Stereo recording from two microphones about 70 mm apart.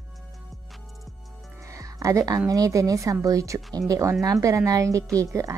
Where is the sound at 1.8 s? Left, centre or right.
Right.